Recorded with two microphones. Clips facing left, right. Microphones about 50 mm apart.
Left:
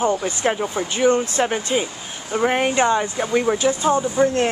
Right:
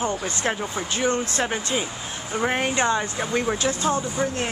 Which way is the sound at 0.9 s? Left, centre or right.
Left.